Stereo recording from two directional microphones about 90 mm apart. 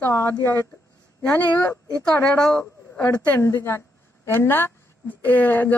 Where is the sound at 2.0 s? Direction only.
10° left (ahead or behind).